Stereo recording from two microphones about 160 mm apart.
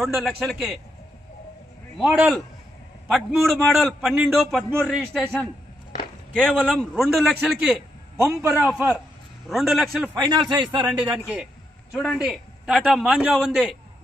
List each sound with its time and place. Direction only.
0.0 s a man's voice: centre (ahead or behind)
2.0 s a man's voice: 10° right (ahead or behind)
8.2 s a man's voice: 20° right (ahead or behind)
8.5 s a man's voice: 5° right (ahead or behind)
10.1 s a man's voice: 25° right (ahead or behind)
11.9 s a man's voice: centre (ahead or behind)